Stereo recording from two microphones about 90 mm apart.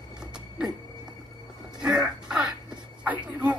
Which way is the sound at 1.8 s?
5° right (ahead or behind).